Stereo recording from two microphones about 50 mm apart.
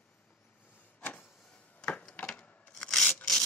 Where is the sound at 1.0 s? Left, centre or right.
Left.